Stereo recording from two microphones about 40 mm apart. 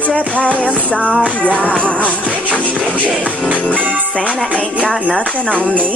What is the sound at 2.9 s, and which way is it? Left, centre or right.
Music, right.